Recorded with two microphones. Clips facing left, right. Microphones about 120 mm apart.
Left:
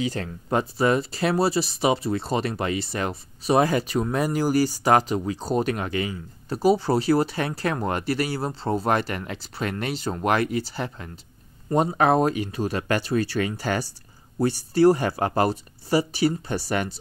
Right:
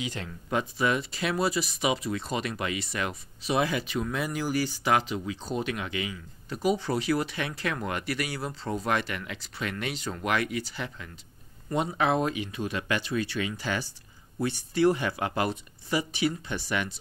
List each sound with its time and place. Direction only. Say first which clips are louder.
0.0 s speech: left 7 dB; 40° left (ahead or behind)